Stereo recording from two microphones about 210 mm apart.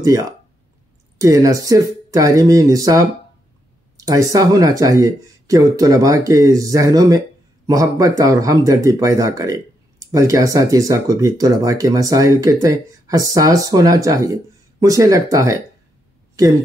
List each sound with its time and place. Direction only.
0.0 s speech: 15° right (ahead or behind)